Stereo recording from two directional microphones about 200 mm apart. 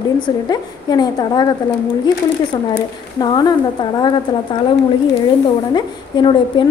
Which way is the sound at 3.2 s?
20° left (ahead or behind).